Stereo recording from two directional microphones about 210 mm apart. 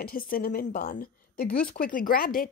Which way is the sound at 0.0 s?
40° left (ahead or behind).